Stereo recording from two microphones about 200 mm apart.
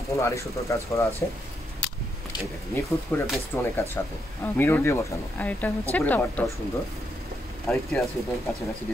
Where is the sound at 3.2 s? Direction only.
Centre (ahead or behind).